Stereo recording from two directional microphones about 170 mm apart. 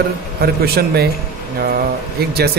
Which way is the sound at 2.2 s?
70° right (ahead or behind).